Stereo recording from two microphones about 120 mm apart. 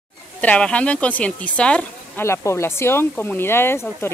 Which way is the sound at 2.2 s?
20° left (ahead or behind).